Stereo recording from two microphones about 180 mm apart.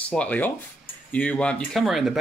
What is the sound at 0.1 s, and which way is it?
Speech, 10° left (ahead or behind).